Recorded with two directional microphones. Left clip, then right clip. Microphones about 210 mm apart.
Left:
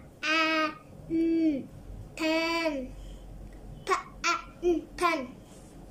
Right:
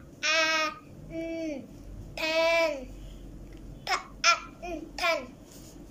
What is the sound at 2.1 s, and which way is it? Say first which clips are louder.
Child singing: right 3 dB; 35° left (ahead or behind).